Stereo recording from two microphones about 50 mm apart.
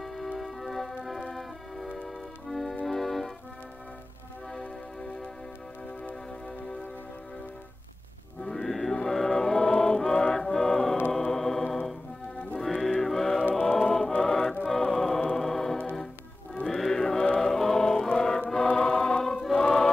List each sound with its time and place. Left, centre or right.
0.0 s music: centre
2.4 s accordion: centre
2.8 s organ: centre
8.5 s music: centre
13.6 s choir: centre
14.7 s music: centre
18.8 s choir: centre